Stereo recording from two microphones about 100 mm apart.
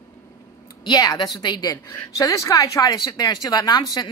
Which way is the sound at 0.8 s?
45° left (ahead or behind).